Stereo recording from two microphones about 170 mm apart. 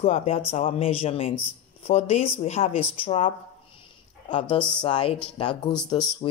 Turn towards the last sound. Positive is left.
turn(degrees=25)  # may be behind; listen again after turning